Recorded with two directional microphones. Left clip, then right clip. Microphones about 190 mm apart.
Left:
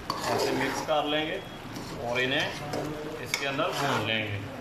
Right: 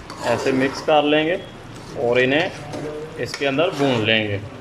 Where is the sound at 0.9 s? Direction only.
50° right (ahead or behind).